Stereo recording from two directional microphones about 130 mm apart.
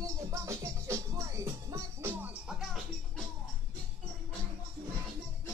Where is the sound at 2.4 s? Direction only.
5° right (ahead or behind).